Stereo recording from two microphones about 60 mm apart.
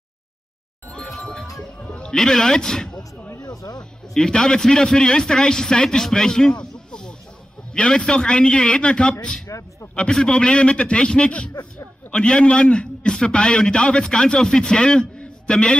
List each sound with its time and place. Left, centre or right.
1.0 s bicycle bell: centre
1.8 s a man's voice: centre
3.3 s speech: left
4.1 s a man's voice: centre
9.5 s a sound: left
9.9 s a man's voice: centre